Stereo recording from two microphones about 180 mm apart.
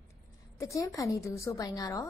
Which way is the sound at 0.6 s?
15° left (ahead or behind).